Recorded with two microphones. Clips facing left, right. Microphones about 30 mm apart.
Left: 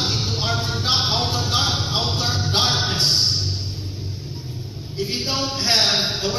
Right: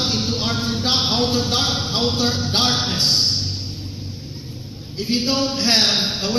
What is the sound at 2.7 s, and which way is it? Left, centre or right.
Speech, right.